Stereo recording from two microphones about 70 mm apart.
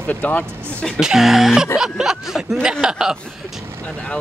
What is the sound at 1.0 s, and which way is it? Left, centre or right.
Speech, centre.